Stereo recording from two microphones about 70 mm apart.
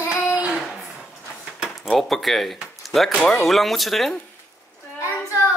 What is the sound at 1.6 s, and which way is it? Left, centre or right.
Speech, centre.